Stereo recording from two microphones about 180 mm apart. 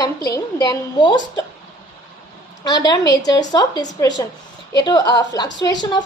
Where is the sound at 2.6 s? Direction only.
20° left (ahead or behind).